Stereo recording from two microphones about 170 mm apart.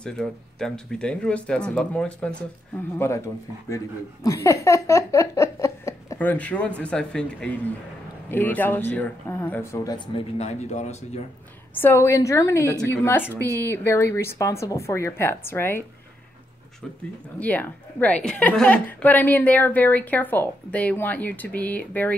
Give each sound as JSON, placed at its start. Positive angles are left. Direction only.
{"t": 0.0, "sound": "a woman's voice", "side_deg": 5}
{"t": 4.6, "sound": "a sound", "side_deg": 20}
{"t": 6.8, "sound": "a woman's voice", "side_deg": 5}
{"t": 9.9, "sound": "speech", "side_deg": 35}
{"t": 11.7, "sound": "a woman's voice", "side_deg": 10}
{"t": 17.4, "sound": "a woman's voice", "side_deg": 10}